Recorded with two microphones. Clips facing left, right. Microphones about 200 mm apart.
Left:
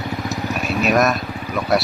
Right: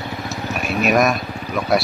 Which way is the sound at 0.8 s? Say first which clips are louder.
Right 1 dB; centre (ahead or behind).